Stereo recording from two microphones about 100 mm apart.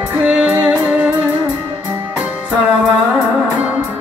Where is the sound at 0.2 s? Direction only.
10° right (ahead or behind).